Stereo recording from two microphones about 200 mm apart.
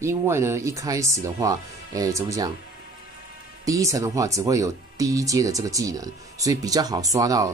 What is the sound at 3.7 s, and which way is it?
Speech, 15° right (ahead or behind).